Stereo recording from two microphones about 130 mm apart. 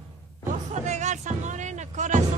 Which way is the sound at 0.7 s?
65° right (ahead or behind).